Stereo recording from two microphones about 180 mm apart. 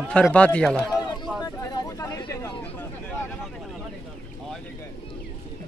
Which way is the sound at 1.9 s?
20° left (ahead or behind).